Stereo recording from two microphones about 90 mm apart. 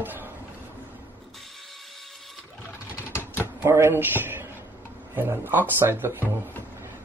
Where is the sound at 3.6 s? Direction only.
25° right (ahead or behind).